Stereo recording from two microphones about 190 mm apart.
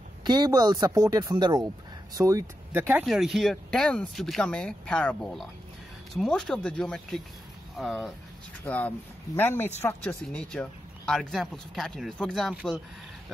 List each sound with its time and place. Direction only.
0.2 s speech: 20° right (ahead or behind); by 12.7 s centre (ahead or behind)